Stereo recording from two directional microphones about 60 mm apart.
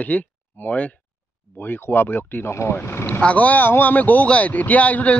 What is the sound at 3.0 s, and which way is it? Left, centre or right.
Speech, left.